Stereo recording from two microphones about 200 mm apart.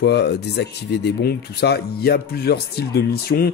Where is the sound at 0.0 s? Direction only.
55° left (ahead or behind).